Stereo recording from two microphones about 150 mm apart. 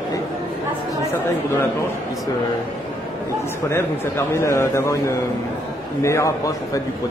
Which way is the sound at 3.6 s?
15° left (ahead or behind).